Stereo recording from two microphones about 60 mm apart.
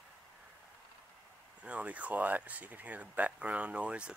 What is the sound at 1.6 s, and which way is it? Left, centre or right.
Speech, right.